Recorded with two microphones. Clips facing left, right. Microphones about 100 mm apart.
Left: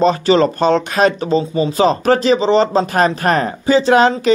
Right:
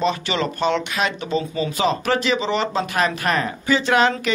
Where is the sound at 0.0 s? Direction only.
40° left (ahead or behind).